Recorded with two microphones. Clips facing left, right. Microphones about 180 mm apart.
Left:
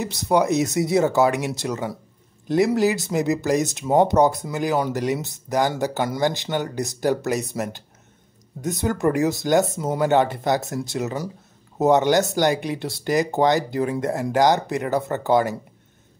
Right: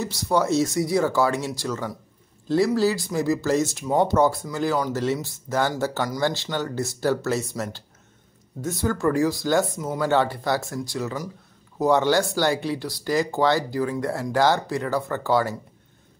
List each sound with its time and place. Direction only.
0.0 s speech: 20° left (ahead or behind)